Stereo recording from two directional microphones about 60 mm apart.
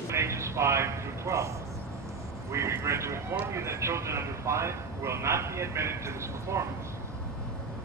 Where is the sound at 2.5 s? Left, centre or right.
Right.